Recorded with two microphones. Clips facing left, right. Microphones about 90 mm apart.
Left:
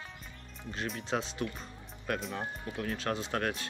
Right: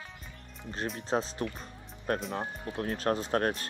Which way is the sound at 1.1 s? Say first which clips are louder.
Right 4 dB; 35° right (ahead or behind).